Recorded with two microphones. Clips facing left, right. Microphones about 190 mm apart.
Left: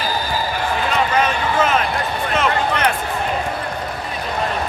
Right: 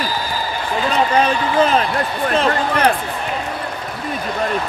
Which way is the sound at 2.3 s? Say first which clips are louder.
Right 2 dB; 30° right (ahead or behind).